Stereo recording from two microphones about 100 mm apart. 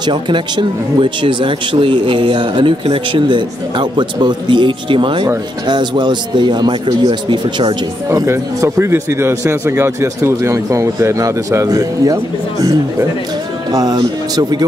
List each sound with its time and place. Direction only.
0.0 s speech: 50° right (ahead or behind)
8.3 s a man's voice: 30° right (ahead or behind)
13.7 s speech: 40° right (ahead or behind)